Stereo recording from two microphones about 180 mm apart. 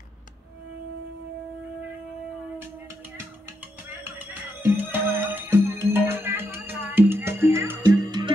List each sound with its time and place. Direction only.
3.9 s music: 10° right (ahead or behind)